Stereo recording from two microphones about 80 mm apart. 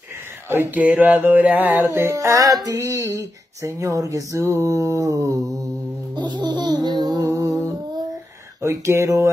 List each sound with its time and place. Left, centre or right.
0.5 s a sound: right
1.0 s mantra: right
1.9 s speech: right
2.5 s music: right
6.1 s music: right
7.2 s music: right
8.5 s speech: right